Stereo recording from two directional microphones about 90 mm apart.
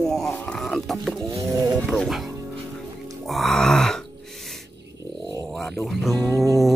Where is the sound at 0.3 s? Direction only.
15° left (ahead or behind).